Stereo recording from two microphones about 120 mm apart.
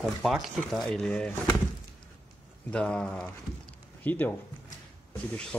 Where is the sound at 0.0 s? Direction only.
Centre (ahead or behind).